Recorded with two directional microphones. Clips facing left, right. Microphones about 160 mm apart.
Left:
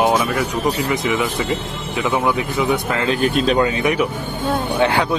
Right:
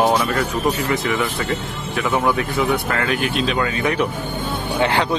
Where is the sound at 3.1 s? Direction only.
40° left (ahead or behind).